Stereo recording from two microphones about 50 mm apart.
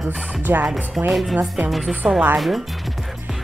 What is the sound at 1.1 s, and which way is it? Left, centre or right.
Speech, centre.